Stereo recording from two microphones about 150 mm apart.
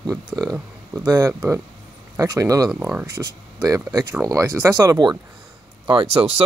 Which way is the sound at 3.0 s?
25° right (ahead or behind).